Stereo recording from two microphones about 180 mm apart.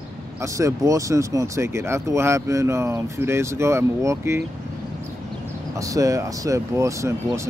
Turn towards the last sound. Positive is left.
turn(degrees=-15)  # may be behind; listen again after turning